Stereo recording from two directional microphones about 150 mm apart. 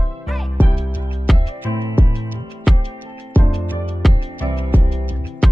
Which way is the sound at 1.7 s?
20° right (ahead or behind).